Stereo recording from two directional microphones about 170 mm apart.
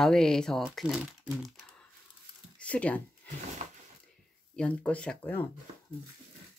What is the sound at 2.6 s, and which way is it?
Speech, 5° left (ahead or behind).